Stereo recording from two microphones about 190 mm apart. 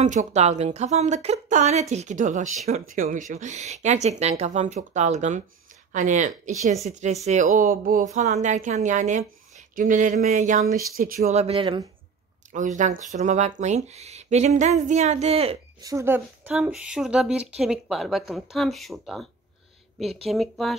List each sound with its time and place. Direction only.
0.0 s speech: 40° right (ahead or behind)
12.5 s speech: 40° right (ahead or behind)
15.8 s speech: 15° right (ahead or behind); by 19.2 s centre (ahead or behind)
20.2 s speech: centre (ahead or behind)